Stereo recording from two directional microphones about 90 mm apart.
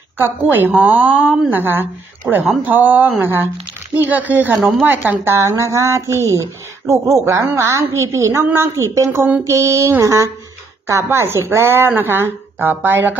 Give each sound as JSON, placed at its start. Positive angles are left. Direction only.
{"t": 0.2, "sound": "speech", "side_deg": -20}
{"t": 5.3, "sound": "speech", "side_deg": -30}